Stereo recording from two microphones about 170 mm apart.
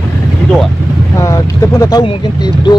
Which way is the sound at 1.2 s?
20° left (ahead or behind).